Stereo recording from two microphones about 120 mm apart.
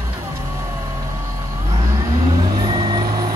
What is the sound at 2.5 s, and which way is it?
Vehicle, 40° right (ahead or behind).